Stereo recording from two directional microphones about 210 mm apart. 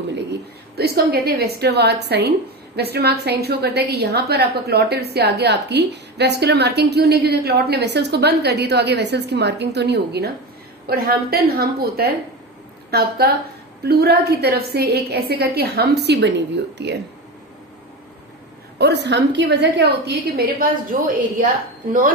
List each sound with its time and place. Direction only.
0.3 s a woman's voice: 50° right (ahead or behind)
13.8 s a woman's voice: 50° right (ahead or behind)
18.8 s a woman's voice: 55° right (ahead or behind)